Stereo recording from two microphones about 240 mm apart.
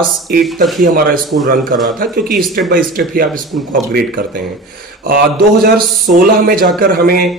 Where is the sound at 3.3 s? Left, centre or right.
Centre.